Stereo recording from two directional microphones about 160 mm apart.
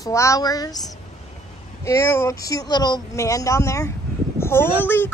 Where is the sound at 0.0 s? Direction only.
20° left (ahead or behind).